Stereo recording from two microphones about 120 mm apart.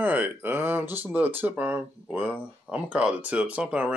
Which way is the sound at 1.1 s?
15° right (ahead or behind).